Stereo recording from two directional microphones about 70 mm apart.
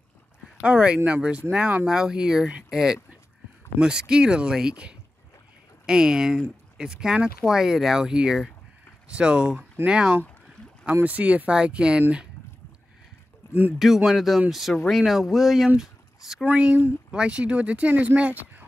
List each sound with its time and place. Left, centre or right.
0.7 s speech: centre
13.5 s speech: right
13.7 s speech: centre
15.8 s a sound: centre
16.4 s speech: right